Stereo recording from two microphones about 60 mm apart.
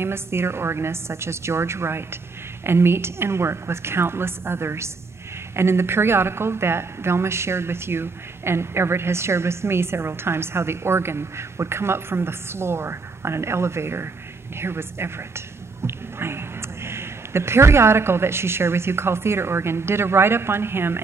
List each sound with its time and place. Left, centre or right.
0.0 s a woman's voice: right